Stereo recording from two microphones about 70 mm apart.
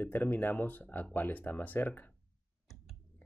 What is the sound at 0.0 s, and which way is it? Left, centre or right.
Speech, left.